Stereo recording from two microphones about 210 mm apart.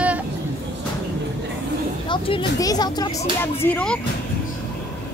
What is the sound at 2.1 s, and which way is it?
Speech, 25° left (ahead or behind).